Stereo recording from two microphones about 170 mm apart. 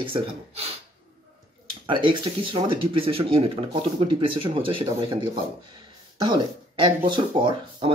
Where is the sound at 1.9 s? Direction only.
30° right (ahead or behind).